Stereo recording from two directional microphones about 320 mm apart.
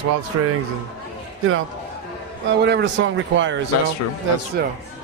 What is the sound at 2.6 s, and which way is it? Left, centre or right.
Speech, right.